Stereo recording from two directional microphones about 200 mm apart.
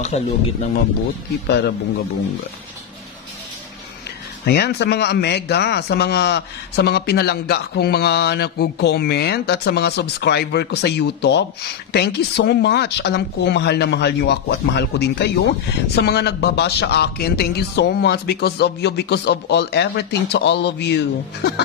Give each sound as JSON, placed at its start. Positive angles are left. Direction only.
{"t": 0.1, "sound": "speech", "side_deg": 30}
{"t": 4.5, "sound": "a man's voice", "side_deg": 55}